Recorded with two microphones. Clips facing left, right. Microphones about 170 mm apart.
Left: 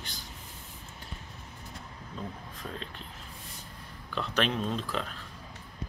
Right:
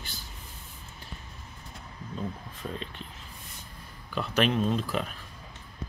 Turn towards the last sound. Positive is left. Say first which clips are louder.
# right 4 dB
turn(degrees=-10)  # may be behind; listen again after turning